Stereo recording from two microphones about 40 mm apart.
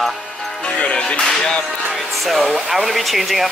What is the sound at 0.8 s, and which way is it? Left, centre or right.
Music, left.